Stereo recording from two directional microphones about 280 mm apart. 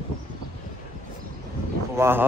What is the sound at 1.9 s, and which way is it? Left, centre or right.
Speech, centre.